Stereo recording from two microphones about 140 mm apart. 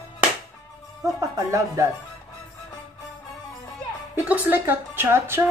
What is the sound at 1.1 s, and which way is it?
Speech, 20° right (ahead or behind).